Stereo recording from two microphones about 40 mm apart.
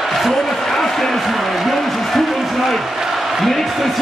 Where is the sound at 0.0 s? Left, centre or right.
Centre.